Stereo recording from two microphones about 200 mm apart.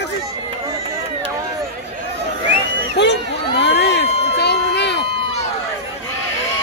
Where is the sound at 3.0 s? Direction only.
60° left (ahead or behind).